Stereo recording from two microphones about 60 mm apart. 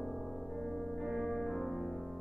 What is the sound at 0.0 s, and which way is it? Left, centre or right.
Music, centre.